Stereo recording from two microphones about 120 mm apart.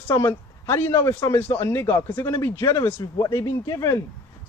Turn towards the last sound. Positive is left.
turn(degrees=30)  # may be behind; listen again after turning